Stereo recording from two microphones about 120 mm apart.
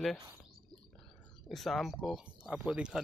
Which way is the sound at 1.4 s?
Centre (ahead or behind).